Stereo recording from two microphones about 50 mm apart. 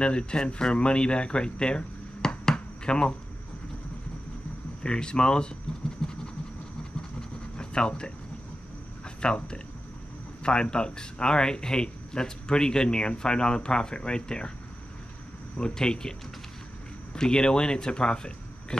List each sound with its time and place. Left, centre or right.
0.0 s speech: centre
4.8 s speech: centre
6.0 s a sound: centre
7.0 s scratch: centre
9.2 s speech: centre
15.5 s speech: centre